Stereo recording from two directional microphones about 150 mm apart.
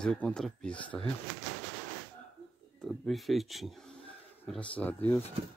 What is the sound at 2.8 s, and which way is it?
Speech, centre (ahead or behind).